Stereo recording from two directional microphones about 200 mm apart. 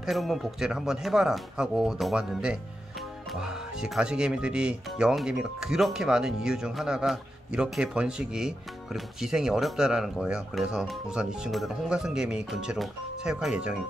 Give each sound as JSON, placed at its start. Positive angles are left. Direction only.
{"t": 0.0, "sound": "speech", "side_deg": 0}